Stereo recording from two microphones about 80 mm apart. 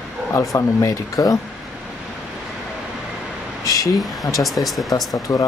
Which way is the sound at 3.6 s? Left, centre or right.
Left.